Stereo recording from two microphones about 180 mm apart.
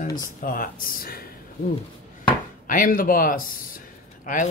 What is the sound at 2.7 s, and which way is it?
Speech, 50° left (ahead or behind).